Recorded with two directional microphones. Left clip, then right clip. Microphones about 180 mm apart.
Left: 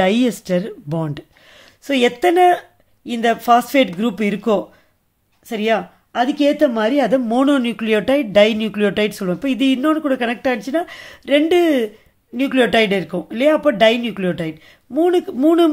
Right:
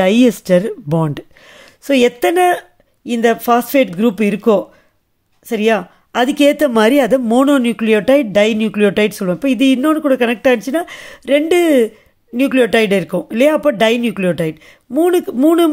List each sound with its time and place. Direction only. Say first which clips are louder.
0.0 s speech: right 4 dB; 25° right (ahead or behind)